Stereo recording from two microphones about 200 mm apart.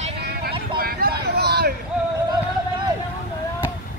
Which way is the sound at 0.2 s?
55° right (ahead or behind).